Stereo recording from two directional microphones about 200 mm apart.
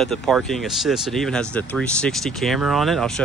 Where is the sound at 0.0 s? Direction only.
5° left (ahead or behind).